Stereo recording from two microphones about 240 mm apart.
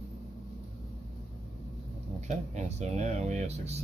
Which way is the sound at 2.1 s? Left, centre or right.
Right.